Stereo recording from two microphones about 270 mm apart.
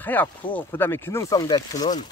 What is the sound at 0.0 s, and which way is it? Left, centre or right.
Speech, centre.